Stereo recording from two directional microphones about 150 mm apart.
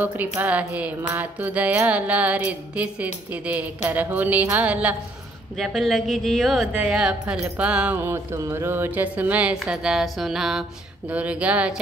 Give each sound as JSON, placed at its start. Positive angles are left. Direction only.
{"t": 0.0, "sound": "music", "side_deg": -10}
{"t": 5.6, "sound": "speech", "side_deg": 0}
{"t": 11.1, "sound": "music", "side_deg": -10}